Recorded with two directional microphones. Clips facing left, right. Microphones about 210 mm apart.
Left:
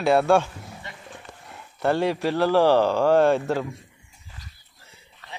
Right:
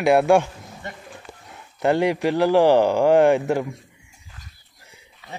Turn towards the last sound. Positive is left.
turn(degrees=-15)  # may be behind; listen again after turning